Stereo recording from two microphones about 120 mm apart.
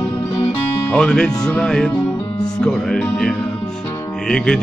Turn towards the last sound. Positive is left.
turn(degrees=5)  # may be behind; listen again after turning